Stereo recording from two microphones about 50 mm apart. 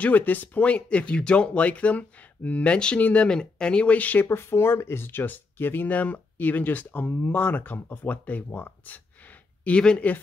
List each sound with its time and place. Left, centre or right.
0.0 s speech: left
4.3 s speech: left
5.9 s speech: left
9.7 s speech: centre